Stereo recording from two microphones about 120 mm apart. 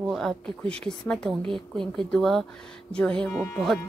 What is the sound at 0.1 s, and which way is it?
A woman's voice, 5° left (ahead or behind).